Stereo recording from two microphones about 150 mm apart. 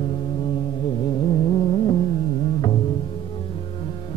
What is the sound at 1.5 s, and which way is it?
Music, 35° left (ahead or behind).